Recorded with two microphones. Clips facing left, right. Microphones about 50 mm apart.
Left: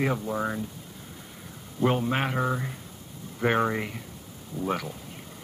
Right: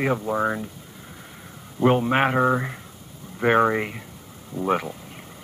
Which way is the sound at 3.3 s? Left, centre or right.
Right.